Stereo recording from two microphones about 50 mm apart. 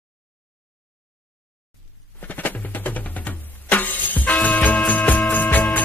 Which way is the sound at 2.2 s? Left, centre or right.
Left.